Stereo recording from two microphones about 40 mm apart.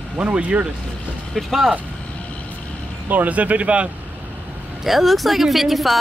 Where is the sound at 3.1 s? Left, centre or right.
Right.